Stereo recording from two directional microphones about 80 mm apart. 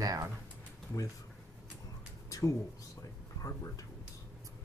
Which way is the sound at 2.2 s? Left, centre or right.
Left.